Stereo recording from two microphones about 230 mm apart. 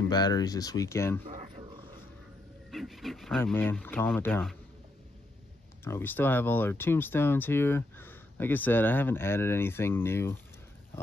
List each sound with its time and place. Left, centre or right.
0.1 s speech: centre
1.2 s a sound: right
2.7 s speech: centre
5.9 s speech: centre